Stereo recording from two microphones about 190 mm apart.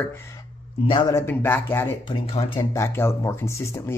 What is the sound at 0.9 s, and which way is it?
Speech, 25° left (ahead or behind).